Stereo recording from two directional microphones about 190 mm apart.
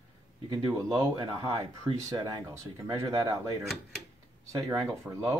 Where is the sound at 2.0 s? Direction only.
20° right (ahead or behind).